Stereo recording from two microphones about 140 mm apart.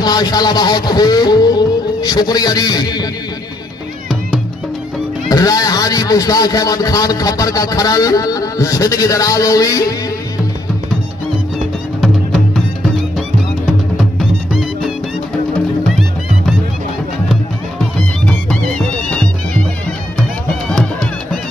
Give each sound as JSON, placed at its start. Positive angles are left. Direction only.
{"t": 0.0, "sound": "speech", "side_deg": 30}
{"t": 5.3, "sound": "a man's voice", "side_deg": 25}
{"t": 12.0, "sound": "music", "side_deg": 0}
{"t": 14.5, "sound": "music", "side_deg": 0}
{"t": 19.0, "sound": "music", "side_deg": 10}